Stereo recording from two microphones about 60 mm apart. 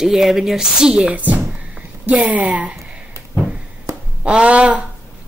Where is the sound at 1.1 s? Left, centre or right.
Right.